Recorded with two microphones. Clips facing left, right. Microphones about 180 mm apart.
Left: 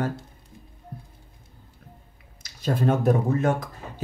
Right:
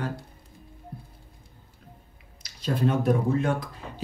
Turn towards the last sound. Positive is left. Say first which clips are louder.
# left 2 dB
turn(degrees=45)  # may be behind; listen again after turning